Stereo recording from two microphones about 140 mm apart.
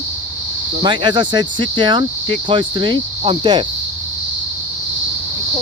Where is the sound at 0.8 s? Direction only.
35° right (ahead or behind).